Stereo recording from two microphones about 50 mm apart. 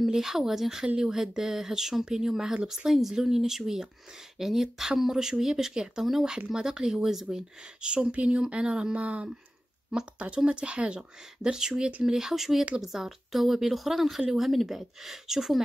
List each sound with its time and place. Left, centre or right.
0.0 s speech: centre
1.2 s a woman's voice: centre